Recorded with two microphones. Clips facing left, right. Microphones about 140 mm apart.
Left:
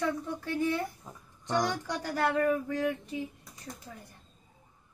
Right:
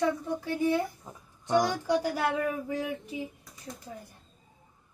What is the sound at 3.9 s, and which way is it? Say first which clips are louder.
Speech: right 4 dB; 20° right (ahead or behind).